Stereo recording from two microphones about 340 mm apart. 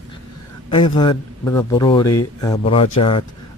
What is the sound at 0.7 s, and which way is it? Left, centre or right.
Speech, centre.